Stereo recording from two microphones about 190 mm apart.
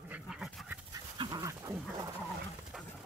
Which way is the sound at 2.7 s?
5° right (ahead or behind).